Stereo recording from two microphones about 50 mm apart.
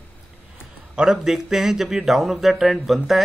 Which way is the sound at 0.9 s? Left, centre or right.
Centre.